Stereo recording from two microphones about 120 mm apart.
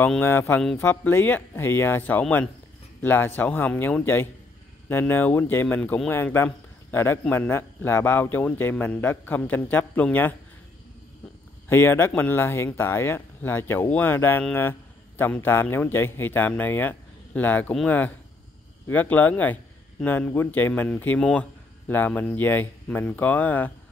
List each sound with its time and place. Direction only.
0.2 s a man's voice: 15° left (ahead or behind)
5.8 s a man's voice: 5° left (ahead or behind)
6.0 s a man's voice: 15° left (ahead or behind)
11.7 s a man's voice: 20° left (ahead or behind)